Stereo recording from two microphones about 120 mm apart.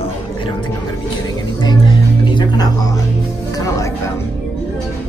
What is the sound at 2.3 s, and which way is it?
Speech, 40° left (ahead or behind).